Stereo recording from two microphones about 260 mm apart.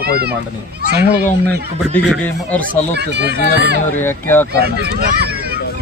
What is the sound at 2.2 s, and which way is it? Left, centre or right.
Speech, centre.